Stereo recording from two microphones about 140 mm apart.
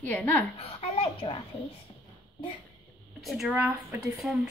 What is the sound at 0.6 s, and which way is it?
Speech, 45° left (ahead or behind).